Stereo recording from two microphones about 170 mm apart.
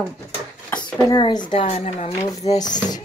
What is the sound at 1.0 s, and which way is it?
Speech, 25° left (ahead or behind).